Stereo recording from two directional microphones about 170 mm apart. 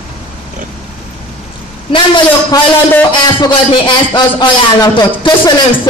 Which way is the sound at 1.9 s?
30° left (ahead or behind).